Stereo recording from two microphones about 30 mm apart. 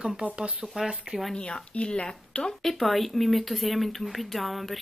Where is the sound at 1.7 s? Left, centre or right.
Left.